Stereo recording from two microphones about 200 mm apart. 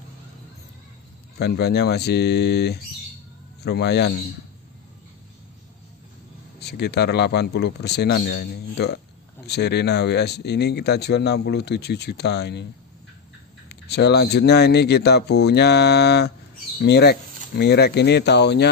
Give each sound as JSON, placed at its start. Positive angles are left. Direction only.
{"t": 1.4, "sound": "speech", "side_deg": 55}
{"t": 6.6, "sound": "speech", "side_deg": 55}
{"t": 13.7, "sound": "speech", "side_deg": 55}